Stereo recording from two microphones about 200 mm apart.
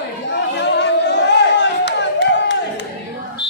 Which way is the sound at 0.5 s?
60° left (ahead or behind).